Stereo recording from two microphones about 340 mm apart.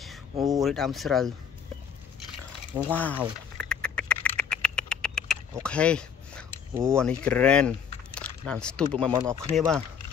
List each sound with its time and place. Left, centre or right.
0.6 s speech: centre
2.7 s speech: centre
3.5 s duck: centre
5.6 s a sound: centre
7.0 s speech: centre
9.1 s speech: centre